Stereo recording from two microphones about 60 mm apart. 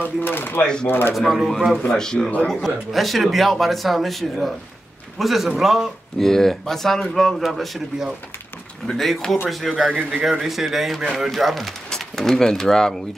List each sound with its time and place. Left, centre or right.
0.0 s speech: left
1.1 s a man's voice: centre
1.9 s a man's voice: centre